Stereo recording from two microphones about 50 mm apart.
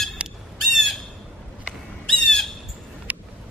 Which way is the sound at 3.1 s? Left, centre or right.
Right.